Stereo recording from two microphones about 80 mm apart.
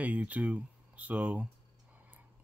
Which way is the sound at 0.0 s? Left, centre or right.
Centre.